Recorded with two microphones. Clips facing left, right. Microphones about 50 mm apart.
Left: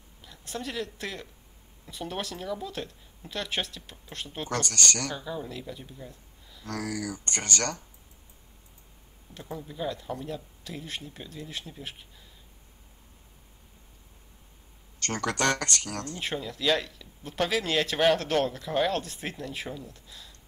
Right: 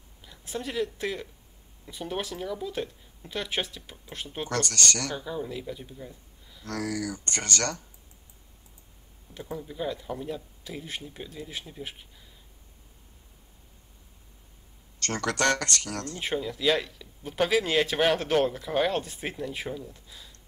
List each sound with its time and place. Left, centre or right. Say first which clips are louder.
0.2 s speech: right 1 dB; centre
4.5 s speech: right 1 dB; left
5.1 s speech: right 2 dB; centre
6.6 s speech: right 2 dB; left
9.3 s speech: right 2 dB; centre
15.0 s speech: right 1 dB; left
16.2 s speech: right 5 dB; centre